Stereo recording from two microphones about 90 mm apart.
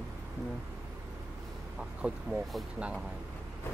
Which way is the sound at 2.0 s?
15° right (ahead or behind).